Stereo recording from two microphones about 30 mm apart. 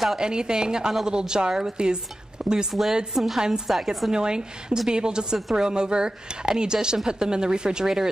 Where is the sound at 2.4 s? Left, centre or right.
Right.